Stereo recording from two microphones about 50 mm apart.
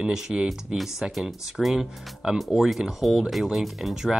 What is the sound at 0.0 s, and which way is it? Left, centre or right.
Speech, centre.